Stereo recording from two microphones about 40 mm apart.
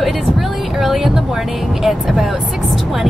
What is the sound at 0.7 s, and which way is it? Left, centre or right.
A woman's voice, centre.